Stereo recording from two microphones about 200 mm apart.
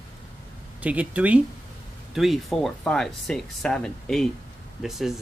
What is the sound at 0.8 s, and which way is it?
Speech, 5° right (ahead or behind).